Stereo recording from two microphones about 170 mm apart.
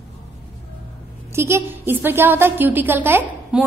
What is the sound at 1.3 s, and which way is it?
A woman's voice, 15° right (ahead or behind).